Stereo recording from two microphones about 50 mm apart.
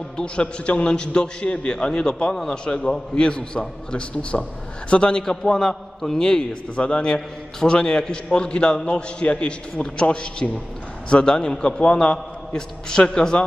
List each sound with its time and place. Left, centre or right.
0.2 s a man's voice: left